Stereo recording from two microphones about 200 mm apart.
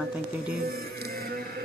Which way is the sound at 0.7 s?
50° right (ahead or behind).